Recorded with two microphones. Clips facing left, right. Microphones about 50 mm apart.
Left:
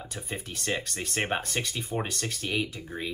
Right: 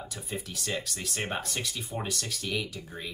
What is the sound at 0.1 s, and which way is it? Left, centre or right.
Speech, left.